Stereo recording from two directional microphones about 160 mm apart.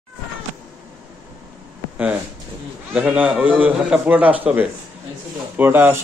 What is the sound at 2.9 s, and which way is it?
A man's voice, 10° right (ahead or behind).